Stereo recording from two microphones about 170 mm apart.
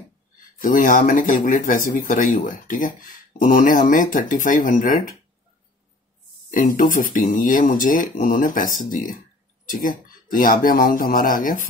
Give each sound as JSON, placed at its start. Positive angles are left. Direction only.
{"t": 0.6, "sound": "speech", "side_deg": 55}
{"t": 6.5, "sound": "speech", "side_deg": 55}